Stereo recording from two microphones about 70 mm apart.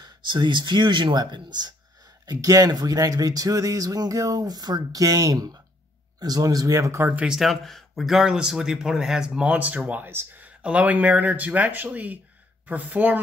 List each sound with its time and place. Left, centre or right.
0.0 s speech: right
2.2 s speech: right
7.2 s speech: centre
9.5 s speech: right